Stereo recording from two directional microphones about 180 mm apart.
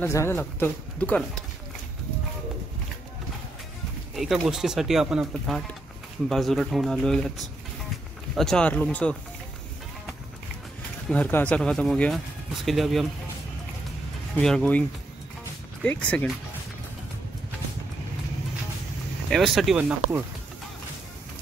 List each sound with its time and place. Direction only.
0.0 s speech: 15° left (ahead or behind)
4.1 s speech: centre (ahead or behind)
11.1 s speech: 10° left (ahead or behind)
14.4 s speech: 5° left (ahead or behind)
19.3 s speech: centre (ahead or behind)